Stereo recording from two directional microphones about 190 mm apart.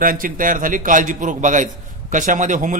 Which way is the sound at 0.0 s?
45° right (ahead or behind).